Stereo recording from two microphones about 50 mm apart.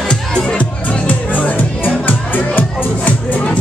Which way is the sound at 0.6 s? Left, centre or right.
Left.